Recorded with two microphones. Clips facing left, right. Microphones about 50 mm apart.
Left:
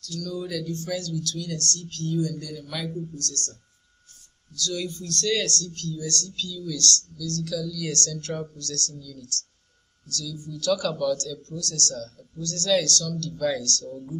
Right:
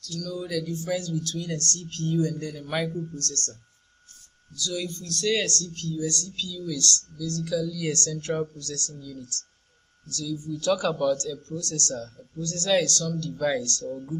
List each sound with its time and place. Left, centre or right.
0.0 s speech: centre; by 3.5 s right
4.7 s speech: centre
5.2 s speech: right